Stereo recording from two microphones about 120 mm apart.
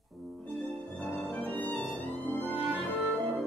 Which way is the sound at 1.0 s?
Centre (ahead or behind).